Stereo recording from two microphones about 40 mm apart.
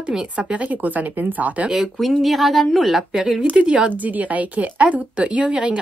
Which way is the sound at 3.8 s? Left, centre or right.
Right.